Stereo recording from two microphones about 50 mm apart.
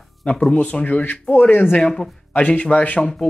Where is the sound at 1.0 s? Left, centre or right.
Left.